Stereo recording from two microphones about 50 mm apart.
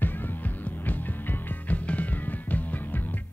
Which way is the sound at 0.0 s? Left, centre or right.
Left.